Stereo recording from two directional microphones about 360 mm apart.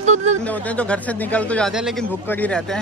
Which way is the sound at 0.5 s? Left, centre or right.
Centre.